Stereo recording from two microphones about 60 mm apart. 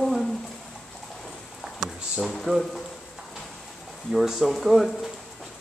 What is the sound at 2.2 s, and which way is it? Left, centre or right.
Speech, centre.